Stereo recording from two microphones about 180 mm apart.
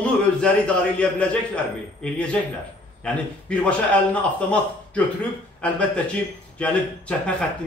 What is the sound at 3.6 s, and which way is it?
A man's voice, 5° left (ahead or behind).